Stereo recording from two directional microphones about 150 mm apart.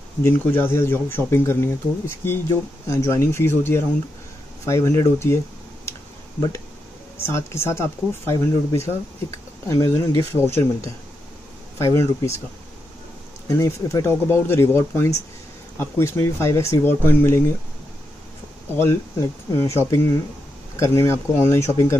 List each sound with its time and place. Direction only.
0.2 s speech: 15° left (ahead or behind)
7.2 s speech: 15° left (ahead or behind)
13.5 s speech: 20° left (ahead or behind)
18.8 s speech: 15° left (ahead or behind)